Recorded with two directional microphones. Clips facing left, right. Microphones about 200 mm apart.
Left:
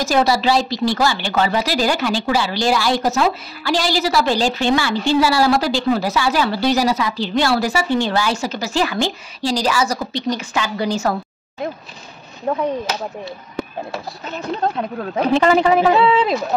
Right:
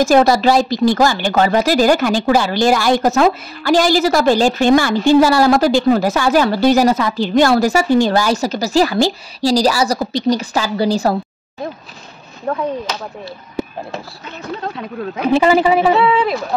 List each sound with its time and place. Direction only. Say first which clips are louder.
0.0 s speech: right 5 dB; 50° right (ahead or behind); by 11.1 s 35° right (ahead or behind)
15.2 s a woman's voice: right 2 dB; 5° right (ahead or behind)
16.0 s speech: right 1 dB; 20° left (ahead or behind)